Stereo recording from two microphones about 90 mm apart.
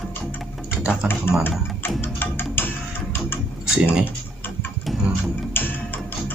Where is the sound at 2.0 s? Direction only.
25° left (ahead or behind).